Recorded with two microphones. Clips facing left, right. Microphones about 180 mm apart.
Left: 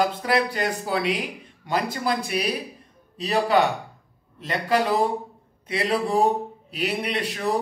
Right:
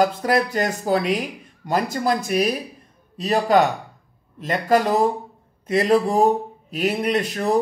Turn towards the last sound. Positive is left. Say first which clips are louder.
# right 5 dB
turn(degrees=-45)  # may be behind; listen again after turning